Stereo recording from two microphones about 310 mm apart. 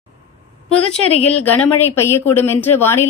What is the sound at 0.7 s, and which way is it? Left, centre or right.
Speech, centre.